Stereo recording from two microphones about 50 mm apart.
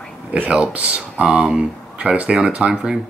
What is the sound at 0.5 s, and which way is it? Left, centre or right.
Speech, right.